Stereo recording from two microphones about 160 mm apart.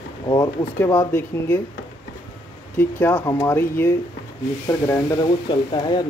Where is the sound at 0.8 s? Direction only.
15° left (ahead or behind).